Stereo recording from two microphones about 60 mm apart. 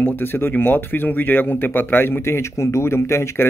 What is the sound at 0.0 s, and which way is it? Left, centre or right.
Speech, left.